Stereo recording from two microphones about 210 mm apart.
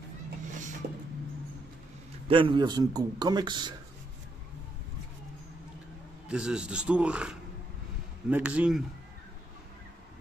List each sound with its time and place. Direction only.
2.2 s a man's voice: 25° right (ahead or behind)
6.2 s a man's voice: 5° right (ahead or behind)